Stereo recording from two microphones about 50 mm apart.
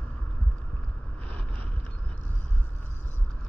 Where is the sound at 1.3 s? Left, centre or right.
Left.